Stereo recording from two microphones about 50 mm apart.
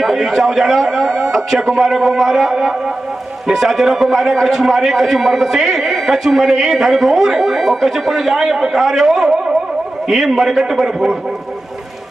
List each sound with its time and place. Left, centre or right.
0.0 s a man's voice: centre